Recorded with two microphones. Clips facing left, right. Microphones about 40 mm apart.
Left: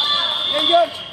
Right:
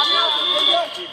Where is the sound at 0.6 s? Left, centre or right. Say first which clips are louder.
Left 7 dB; centre.